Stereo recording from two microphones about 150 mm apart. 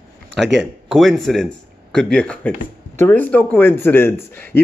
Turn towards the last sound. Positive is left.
turn(degrees=15)  # may be behind; listen again after turning